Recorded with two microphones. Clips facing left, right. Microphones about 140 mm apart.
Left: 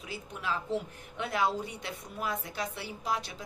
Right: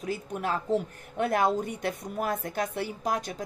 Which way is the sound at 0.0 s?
45° right (ahead or behind).